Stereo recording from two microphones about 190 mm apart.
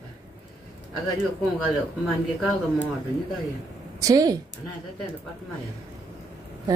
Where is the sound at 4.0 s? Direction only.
20° right (ahead or behind).